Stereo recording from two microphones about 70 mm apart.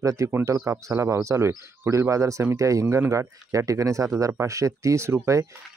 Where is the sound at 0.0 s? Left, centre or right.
Right.